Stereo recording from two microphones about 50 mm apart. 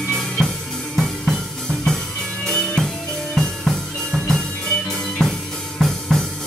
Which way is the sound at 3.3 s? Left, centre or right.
Centre.